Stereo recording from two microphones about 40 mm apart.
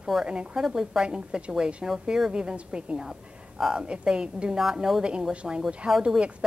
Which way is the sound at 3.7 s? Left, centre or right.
Right.